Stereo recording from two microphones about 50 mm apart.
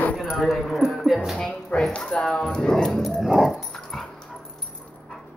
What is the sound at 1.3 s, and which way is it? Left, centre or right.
Speech, centre.